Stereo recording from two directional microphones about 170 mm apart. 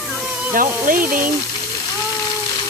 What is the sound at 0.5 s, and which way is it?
Speech, 55° right (ahead or behind).